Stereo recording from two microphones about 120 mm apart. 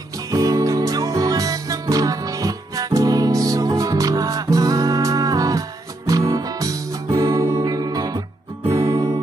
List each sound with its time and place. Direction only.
0.3 s music: 30° right (ahead or behind)